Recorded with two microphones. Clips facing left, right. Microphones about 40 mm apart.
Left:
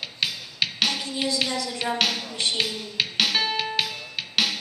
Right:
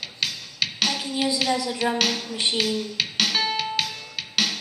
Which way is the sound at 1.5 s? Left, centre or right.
Centre.